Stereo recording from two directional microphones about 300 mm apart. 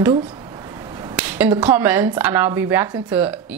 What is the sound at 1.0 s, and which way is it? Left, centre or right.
Speech, centre.